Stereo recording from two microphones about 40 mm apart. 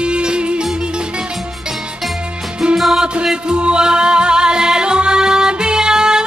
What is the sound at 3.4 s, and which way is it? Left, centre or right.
Music, right.